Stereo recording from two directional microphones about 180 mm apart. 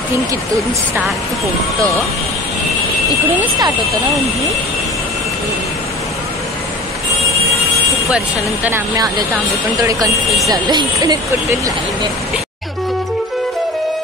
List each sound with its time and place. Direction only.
8.6 s speech: 15° right (ahead or behind)